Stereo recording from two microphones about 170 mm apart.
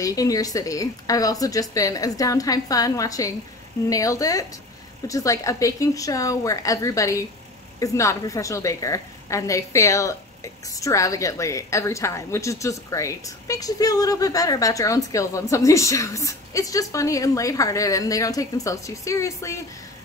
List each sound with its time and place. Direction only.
0.0 s a woman's voice: 20° left (ahead or behind)